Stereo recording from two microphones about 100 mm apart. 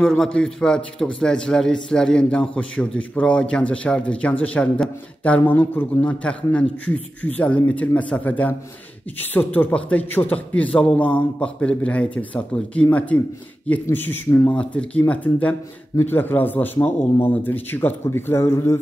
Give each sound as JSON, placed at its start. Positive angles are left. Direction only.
{"t": 0.0, "sound": "a man's voice", "side_deg": 5}
{"t": 13.8, "sound": "a man's voice", "side_deg": 20}